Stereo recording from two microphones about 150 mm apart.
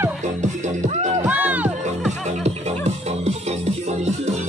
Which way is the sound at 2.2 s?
45° right (ahead or behind).